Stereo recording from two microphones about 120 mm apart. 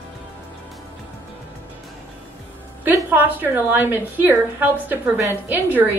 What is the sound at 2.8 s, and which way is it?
A woman's voice, 15° right (ahead or behind).